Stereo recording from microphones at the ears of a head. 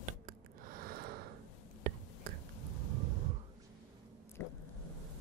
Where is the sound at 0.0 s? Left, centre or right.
Right.